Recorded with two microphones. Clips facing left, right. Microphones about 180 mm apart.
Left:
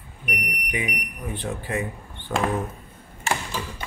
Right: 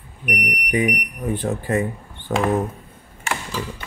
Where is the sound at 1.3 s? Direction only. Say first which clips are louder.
Right 7 dB; 45° right (ahead or behind).